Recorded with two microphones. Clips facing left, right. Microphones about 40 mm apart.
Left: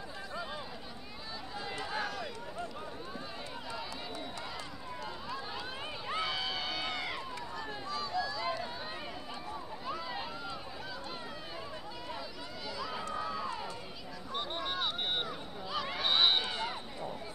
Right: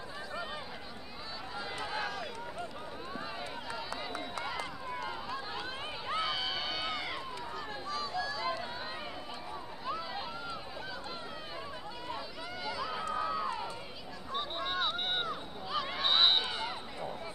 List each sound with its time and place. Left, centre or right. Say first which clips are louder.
1.8 s run: even; centre
4.4 s run: right 5 dB; right
5.0 s run: right 2 dB; centre
9.8 s a sound: right 2 dB; centre
12.6 s run: right 2 dB; centre
13.1 s crowd: right 4 dB; centre
14.3 s a sound: right 1 dB; centre